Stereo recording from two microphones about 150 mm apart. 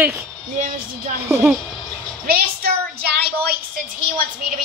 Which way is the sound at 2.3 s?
90° right.